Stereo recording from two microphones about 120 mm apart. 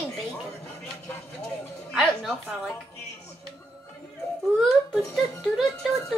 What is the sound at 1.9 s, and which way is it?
Speech, centre (ahead or behind).